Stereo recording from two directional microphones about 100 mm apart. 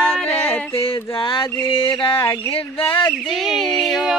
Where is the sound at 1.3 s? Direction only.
60° left (ahead or behind).